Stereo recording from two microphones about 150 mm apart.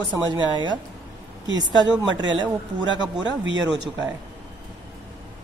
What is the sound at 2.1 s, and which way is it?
Speech, 30° right (ahead or behind).